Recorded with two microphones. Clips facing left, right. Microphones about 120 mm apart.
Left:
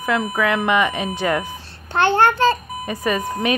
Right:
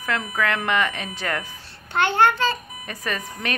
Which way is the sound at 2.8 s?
10° left (ahead or behind).